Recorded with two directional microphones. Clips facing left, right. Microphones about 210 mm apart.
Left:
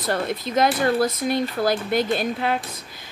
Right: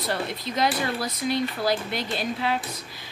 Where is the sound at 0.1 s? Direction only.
50° left (ahead or behind).